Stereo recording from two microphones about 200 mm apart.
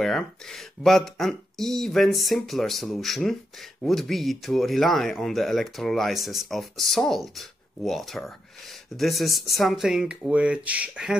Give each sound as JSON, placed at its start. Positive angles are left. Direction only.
{"t": 0.0, "sound": "speech", "side_deg": 0}